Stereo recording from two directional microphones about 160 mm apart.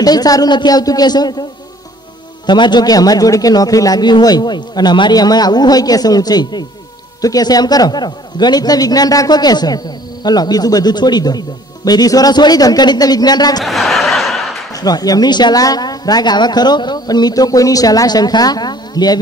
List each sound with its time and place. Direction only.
0.0 s a man's voice: 25° left (ahead or behind)
2.4 s a man's voice: 30° left (ahead or behind)
13.7 s snicker: centre (ahead or behind)
14.8 s a man's voice: 25° left (ahead or behind)